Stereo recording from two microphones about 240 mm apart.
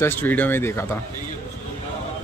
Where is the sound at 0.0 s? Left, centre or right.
Centre.